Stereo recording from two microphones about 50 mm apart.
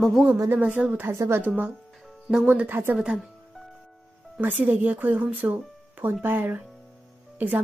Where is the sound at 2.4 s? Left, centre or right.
Right.